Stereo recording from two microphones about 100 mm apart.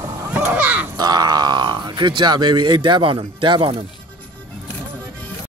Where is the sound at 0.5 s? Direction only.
15° right (ahead or behind).